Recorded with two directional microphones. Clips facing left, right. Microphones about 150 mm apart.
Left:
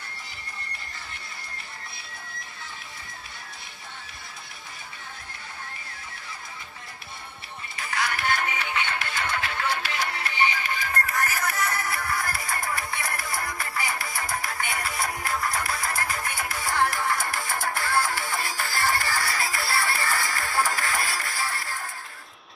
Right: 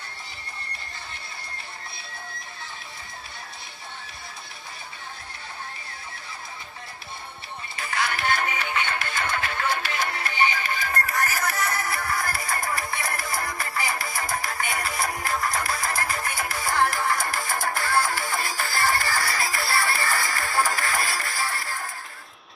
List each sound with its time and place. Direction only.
7.9 s music: 30° right (ahead or behind)
8.5 s music: 45° right (ahead or behind)